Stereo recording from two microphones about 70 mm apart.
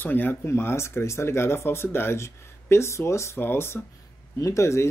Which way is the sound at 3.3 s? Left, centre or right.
Left.